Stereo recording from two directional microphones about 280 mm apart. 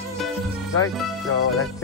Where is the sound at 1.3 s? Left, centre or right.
Left.